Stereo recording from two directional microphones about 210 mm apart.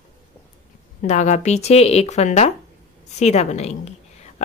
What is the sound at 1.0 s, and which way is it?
A woman's voice, 35° left (ahead or behind).